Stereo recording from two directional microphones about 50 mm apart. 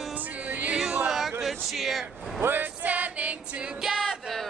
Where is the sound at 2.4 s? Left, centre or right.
Right; by 4.0 s centre.